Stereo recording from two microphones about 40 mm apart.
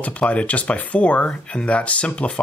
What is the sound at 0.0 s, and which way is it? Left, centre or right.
Speech, left.